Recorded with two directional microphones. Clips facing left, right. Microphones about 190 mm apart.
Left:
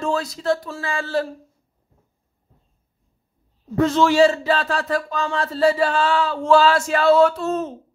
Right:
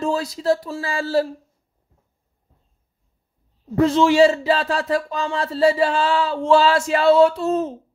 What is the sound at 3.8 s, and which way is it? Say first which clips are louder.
Speech: right 1 dB; 30° right (ahead or behind).